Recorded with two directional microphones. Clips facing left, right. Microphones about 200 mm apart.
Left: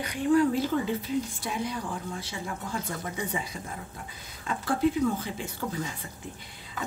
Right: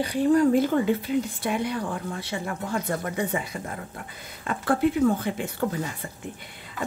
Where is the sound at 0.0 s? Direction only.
35° right (ahead or behind).